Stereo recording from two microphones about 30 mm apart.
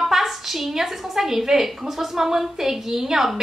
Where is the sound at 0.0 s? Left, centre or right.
Centre.